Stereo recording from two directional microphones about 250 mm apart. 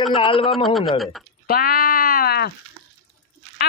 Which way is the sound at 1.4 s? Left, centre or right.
Left.